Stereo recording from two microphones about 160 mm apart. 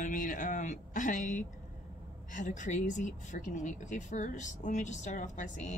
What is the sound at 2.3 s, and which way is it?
Speech, 50° left (ahead or behind).